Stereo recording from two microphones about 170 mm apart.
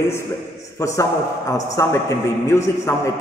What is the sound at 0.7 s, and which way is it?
A man's voice, 20° left (ahead or behind).